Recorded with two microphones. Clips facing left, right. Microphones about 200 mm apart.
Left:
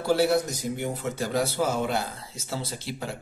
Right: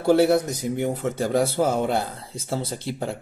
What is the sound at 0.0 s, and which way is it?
Speech, 55° right (ahead or behind).